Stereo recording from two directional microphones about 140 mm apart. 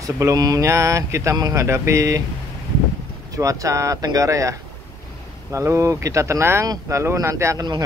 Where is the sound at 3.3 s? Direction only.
25° right (ahead or behind).